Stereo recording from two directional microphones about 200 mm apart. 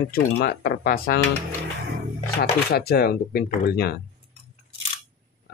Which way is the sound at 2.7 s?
50° left (ahead or behind).